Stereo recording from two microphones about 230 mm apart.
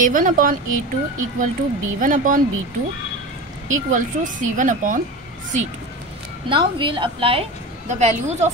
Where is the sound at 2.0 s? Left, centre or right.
Right.